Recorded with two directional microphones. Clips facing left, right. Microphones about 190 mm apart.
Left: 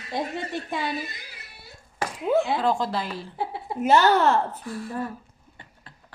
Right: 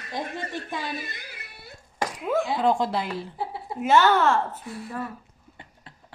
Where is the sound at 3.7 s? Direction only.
35° left (ahead or behind).